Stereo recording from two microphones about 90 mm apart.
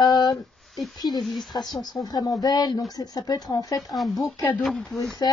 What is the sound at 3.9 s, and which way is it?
Speech, centre (ahead or behind).